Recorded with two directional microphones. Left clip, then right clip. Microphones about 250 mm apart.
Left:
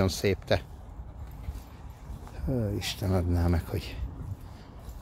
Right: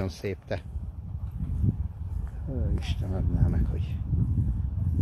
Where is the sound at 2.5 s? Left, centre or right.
Left.